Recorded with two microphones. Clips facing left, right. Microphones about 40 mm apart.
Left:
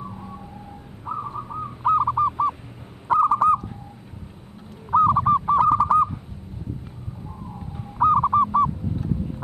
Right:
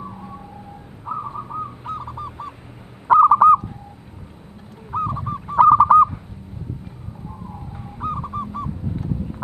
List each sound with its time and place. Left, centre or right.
0.1 s emergency vehicle: centre
1.0 s bird: centre
1.8 s owl: centre
3.1 s owl: right
5.1 s goose: left
5.6 s owl: right
8.1 s bird: left